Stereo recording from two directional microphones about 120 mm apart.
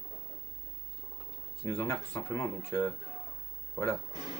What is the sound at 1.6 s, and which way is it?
Speech, 20° left (ahead or behind).